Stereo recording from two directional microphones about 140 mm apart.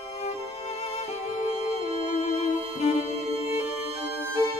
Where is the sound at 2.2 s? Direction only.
50° left (ahead or behind).